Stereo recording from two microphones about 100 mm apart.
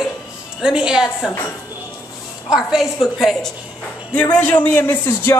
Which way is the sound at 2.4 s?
5° right (ahead or behind).